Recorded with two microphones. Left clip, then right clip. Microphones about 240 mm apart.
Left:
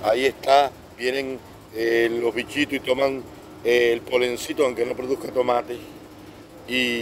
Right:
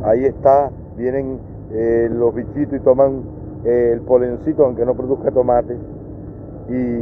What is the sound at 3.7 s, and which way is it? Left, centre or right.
Speech, left.